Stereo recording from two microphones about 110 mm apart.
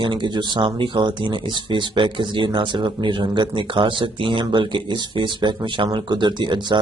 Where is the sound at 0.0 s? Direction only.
45° right (ahead or behind).